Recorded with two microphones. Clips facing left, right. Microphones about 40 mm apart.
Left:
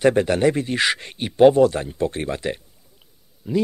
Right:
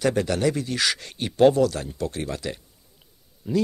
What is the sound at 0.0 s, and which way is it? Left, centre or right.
Speech, left.